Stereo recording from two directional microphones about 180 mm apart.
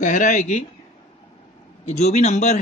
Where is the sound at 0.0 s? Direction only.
45° left (ahead or behind).